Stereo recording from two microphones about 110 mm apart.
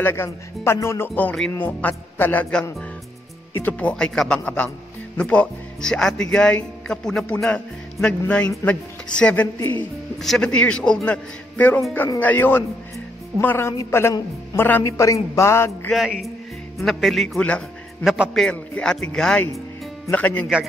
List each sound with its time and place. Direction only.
0.0 s speech: 25° left (ahead or behind)
10.2 s speech: 5° left (ahead or behind); by 15.9 s 25° left (ahead or behind)
15.9 s speech: centre (ahead or behind)
17.4 s speech: 10° left (ahead or behind)
18.0 s speech: 5° right (ahead or behind)
18.4 s speech: 10° left (ahead or behind)